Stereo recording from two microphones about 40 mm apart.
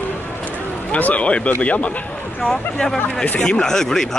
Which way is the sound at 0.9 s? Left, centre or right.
Left.